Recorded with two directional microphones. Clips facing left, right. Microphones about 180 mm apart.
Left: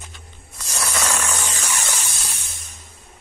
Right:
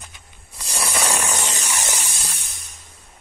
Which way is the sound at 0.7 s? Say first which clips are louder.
Right 1 dB; 10° right (ahead or behind).